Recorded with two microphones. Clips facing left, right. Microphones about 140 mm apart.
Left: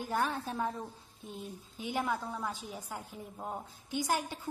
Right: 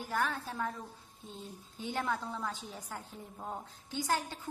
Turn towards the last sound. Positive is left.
turn(degrees=15)  # may be behind; listen again after turning